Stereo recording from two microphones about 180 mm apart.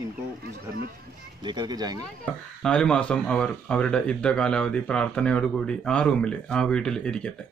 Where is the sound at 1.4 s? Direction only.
25° right (ahead or behind).